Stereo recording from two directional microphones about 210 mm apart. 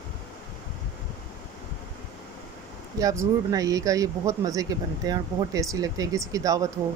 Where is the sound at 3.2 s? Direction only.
15° right (ahead or behind).